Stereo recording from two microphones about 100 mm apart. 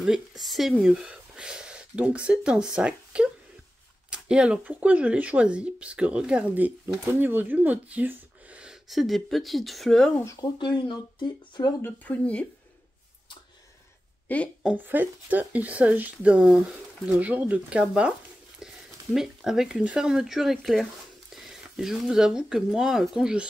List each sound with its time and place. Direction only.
0.0 s speech: centre (ahead or behind)
8.6 s speech: centre (ahead or behind)
10.4 s speech: 50° left (ahead or behind)
11.8 s speech: 15° left (ahead or behind)
14.2 s a woman's voice: 15° left (ahead or behind)
14.8 s speech: 20° right (ahead or behind)
19.1 s speech: 5° right (ahead or behind)